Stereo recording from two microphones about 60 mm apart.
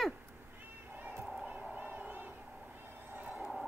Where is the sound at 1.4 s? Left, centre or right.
Right.